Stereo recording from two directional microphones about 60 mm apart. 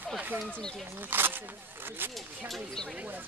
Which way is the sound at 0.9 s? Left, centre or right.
Right.